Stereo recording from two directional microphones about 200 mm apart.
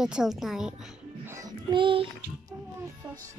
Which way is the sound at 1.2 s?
15° right (ahead or behind).